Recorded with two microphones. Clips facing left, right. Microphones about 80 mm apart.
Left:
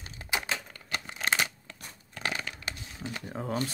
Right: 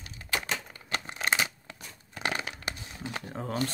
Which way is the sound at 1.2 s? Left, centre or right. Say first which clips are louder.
Even; centre.